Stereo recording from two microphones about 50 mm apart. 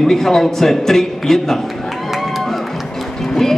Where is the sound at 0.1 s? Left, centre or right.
Centre.